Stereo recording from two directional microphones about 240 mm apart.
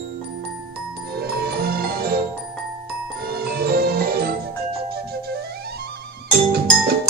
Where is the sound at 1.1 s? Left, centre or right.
Right.